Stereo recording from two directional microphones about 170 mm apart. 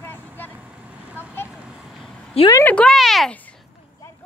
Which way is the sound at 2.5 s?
10° left (ahead or behind).